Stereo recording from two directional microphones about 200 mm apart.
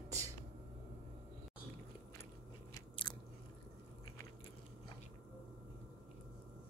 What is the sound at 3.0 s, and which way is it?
Biting, 25° left (ahead or behind).